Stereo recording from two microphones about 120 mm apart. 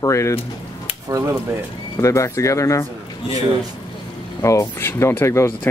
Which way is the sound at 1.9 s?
25° left (ahead or behind).